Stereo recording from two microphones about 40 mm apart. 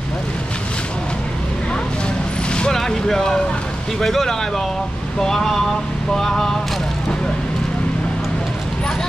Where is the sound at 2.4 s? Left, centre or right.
Left.